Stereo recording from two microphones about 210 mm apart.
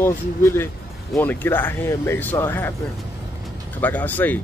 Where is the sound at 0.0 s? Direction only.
10° left (ahead or behind).